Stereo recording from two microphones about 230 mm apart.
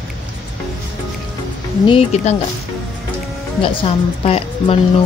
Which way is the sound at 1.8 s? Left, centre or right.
Left.